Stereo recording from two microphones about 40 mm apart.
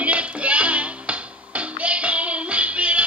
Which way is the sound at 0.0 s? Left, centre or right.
Right.